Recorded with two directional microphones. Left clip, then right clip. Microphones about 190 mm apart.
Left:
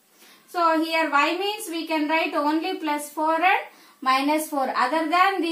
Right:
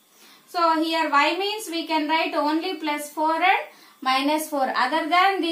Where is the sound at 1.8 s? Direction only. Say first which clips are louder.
Even; 25° right (ahead or behind).